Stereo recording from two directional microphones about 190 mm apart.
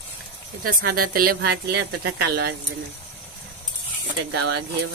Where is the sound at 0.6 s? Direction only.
50° right (ahead or behind).